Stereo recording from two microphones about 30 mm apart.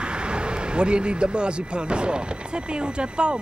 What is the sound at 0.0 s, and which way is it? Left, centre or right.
Speech, right.